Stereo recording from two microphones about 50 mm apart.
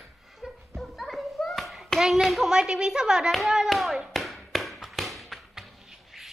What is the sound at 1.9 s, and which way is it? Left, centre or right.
Hands, centre.